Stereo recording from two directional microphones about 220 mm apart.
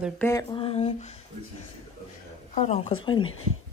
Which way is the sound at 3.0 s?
20° left (ahead or behind).